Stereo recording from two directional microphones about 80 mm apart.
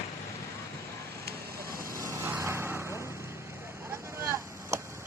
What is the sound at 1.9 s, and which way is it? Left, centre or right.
Vehicle, right.